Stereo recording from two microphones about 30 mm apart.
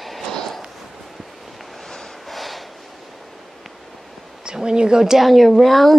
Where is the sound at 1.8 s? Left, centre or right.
Centre.